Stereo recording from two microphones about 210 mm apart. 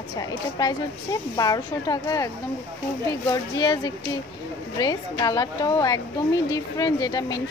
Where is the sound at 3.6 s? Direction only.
20° left (ahead or behind).